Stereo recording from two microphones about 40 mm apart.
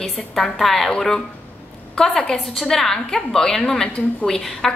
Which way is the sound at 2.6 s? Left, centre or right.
Centre.